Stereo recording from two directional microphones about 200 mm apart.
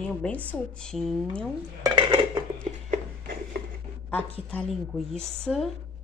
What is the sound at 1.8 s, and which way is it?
Dishes, 20° right (ahead or behind).